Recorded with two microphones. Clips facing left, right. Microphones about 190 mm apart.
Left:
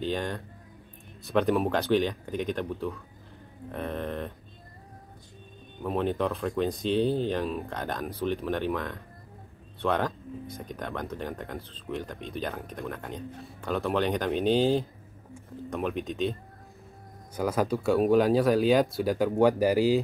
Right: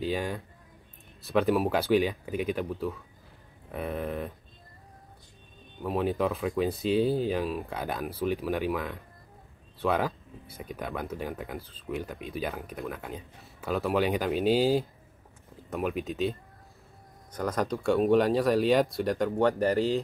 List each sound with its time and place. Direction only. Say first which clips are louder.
0.0 s speech: even; 5° right (ahead or behind)
5.9 s speech: even; 5° right (ahead or behind)